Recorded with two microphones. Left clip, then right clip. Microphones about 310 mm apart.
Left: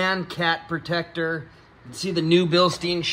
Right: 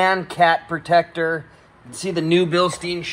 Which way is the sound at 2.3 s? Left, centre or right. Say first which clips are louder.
Right 1 dB; centre.